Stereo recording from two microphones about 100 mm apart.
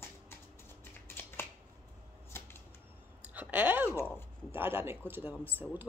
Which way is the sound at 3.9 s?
20° left (ahead or behind).